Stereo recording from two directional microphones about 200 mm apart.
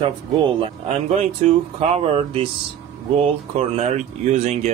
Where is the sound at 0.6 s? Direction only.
30° right (ahead or behind).